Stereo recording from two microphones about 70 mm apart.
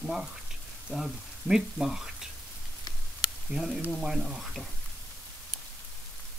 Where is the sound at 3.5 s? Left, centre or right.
Centre.